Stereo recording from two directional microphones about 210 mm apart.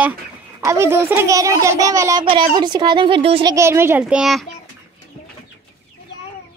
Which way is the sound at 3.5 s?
10° right (ahead or behind).